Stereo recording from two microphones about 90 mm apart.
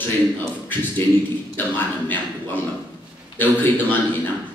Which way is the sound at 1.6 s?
20° left (ahead or behind).